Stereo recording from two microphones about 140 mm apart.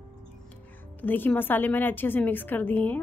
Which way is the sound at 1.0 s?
15° left (ahead or behind).